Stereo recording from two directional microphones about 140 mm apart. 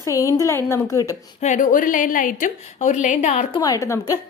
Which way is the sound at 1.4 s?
70° left (ahead or behind).